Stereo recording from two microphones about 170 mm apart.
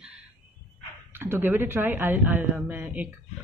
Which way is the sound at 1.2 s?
15° right (ahead or behind).